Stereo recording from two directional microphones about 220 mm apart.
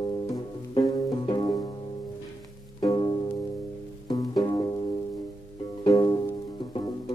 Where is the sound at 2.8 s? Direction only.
20° left (ahead or behind).